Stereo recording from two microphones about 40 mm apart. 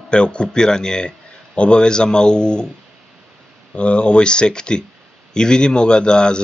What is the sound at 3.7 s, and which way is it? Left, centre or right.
Speech, left.